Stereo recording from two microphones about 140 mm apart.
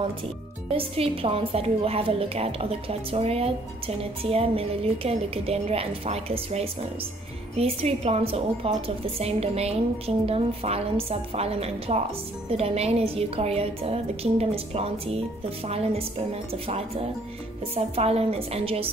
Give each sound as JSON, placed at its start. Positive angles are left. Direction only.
{"t": 0.7, "sound": "a woman's voice", "side_deg": -45}